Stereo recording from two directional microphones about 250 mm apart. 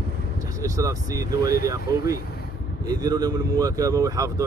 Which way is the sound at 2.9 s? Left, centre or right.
Centre.